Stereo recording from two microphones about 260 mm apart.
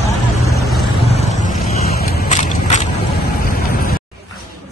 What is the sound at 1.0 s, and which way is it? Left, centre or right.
Vehicle, left.